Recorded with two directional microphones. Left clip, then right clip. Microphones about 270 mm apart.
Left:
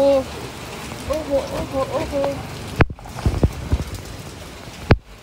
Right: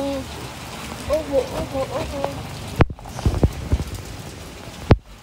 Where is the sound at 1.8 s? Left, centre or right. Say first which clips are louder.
Left 5 dB; left.